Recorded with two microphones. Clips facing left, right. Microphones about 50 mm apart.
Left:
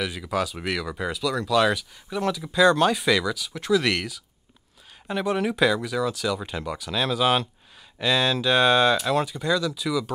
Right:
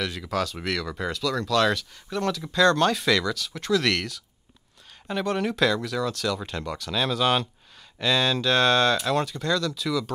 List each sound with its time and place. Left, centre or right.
0.0 s speech: centre